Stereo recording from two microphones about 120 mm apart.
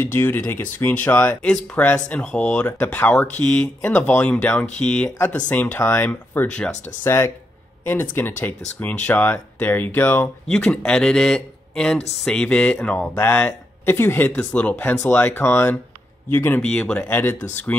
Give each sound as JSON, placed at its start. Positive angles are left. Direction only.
{"t": 0.0, "sound": "speech", "side_deg": 20}
{"t": 7.0, "sound": "speech", "side_deg": 25}
{"t": 10.5, "sound": "speech", "side_deg": 5}
{"t": 16.6, "sound": "speech", "side_deg": 10}